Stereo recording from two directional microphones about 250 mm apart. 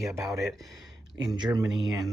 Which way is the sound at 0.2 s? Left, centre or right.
Centre.